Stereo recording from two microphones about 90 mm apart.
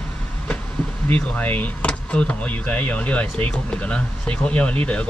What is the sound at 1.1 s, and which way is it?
Speech, 20° left (ahead or behind).